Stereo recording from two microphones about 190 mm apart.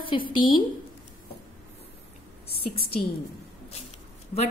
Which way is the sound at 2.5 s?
55° left (ahead or behind).